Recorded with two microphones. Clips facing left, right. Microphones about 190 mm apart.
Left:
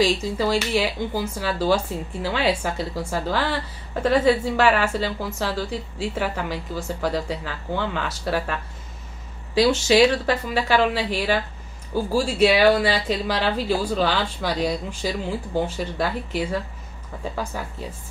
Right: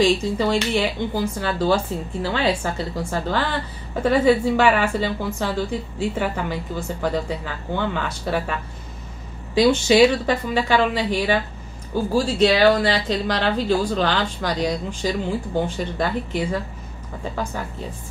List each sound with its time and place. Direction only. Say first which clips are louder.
0.0 s a woman's voice: right 2 dB; 5° left (ahead or behind)
9.6 s a woman's voice: right 2 dB; centre (ahead or behind)